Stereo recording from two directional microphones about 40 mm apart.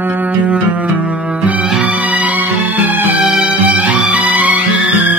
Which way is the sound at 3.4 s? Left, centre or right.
Right.